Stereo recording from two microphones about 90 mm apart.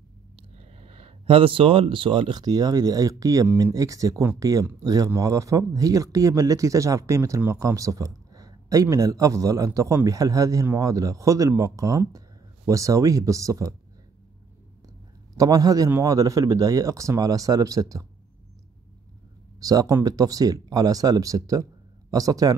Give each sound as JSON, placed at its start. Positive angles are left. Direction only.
{"t": 0.4, "sound": "a sound", "side_deg": -90}
{"t": 2.3, "sound": "speech", "side_deg": -45}
{"t": 15.3, "sound": "speech", "side_deg": -45}
{"t": 19.6, "sound": "speech", "side_deg": -40}